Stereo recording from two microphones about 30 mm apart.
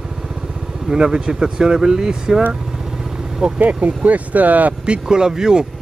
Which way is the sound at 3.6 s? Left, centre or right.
Right.